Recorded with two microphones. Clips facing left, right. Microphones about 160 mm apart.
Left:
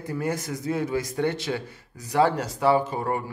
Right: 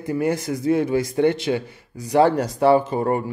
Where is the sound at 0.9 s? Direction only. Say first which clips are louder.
Right 7 dB; 20° right (ahead or behind).